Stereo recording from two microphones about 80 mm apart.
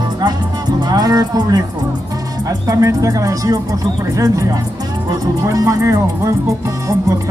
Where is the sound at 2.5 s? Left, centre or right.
Right.